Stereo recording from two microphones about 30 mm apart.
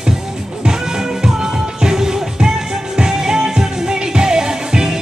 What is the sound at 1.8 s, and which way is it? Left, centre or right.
Music, right.